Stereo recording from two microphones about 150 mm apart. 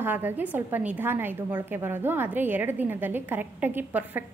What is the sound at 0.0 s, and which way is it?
A woman's voice, 15° right (ahead or behind).